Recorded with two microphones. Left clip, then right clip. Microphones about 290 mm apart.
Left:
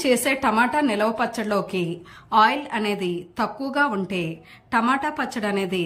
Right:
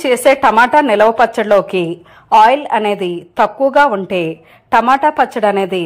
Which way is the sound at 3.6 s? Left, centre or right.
Right.